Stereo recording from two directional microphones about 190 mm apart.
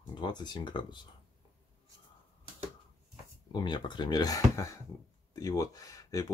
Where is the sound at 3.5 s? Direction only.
25° left (ahead or behind).